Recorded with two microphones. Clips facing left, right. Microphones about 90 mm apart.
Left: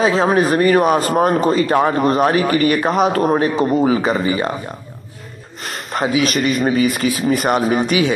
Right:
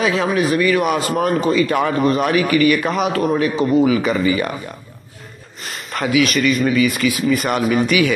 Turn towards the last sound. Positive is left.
turn(degrees=35)  # may be behind; listen again after turning